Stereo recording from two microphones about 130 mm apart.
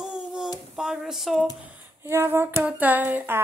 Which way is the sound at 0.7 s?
5° right (ahead or behind).